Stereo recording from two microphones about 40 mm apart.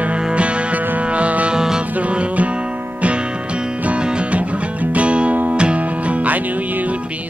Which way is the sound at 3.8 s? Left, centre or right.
Right.